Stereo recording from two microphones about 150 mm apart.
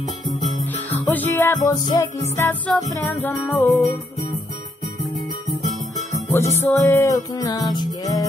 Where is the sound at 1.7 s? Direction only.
25° left (ahead or behind).